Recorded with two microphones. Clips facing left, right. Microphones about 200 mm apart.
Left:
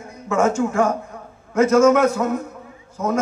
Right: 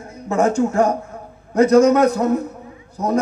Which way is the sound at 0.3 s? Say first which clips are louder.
Right 2 dB; 35° right (ahead or behind).